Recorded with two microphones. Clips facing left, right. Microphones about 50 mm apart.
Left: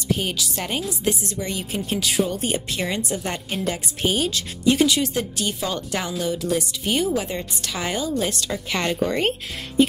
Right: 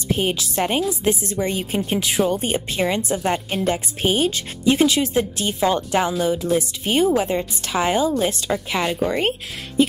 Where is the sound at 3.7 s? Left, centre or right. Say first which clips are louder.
Right 3 dB; right.